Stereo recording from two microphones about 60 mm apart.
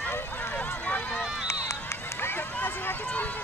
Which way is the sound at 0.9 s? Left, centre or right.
Left.